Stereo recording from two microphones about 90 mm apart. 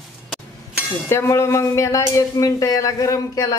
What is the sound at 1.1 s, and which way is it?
Speech, 30° left (ahead or behind).